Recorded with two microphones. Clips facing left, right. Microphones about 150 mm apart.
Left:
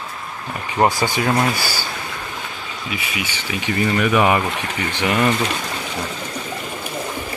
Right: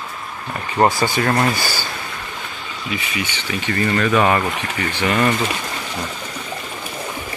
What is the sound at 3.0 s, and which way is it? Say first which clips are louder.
Speech: right 1 dB; 10° left (ahead or behind).